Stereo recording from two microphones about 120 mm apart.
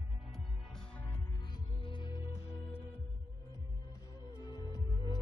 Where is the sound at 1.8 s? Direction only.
40° left (ahead or behind).